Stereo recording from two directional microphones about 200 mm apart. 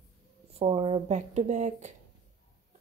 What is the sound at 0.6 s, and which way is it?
Speech, 30° right (ahead or behind).